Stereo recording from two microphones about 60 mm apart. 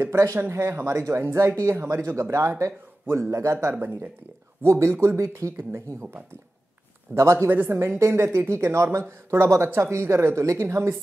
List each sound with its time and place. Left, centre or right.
0.5 s speech: right
3.7 s speech: right
4.6 s speech: right
7.2 s speech: right
7.4 s speech: right
8.0 s speech: right
10.6 s speech: right